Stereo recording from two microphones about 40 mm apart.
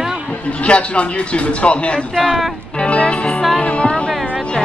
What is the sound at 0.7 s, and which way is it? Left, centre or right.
Speech, left.